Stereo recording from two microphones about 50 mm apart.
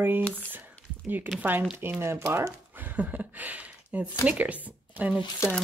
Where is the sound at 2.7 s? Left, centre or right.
Right.